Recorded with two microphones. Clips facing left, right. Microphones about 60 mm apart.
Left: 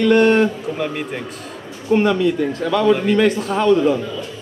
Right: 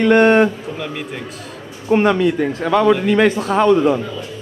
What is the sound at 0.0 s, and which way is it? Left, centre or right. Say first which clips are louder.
Speech: right 2 dB; right.